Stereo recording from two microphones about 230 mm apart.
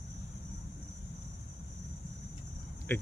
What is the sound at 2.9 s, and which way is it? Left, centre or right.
Speech, centre.